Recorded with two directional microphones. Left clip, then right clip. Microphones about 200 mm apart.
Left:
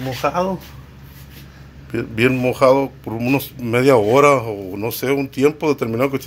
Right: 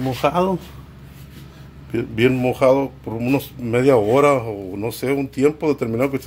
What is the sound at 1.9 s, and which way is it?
Speech, centre (ahead or behind).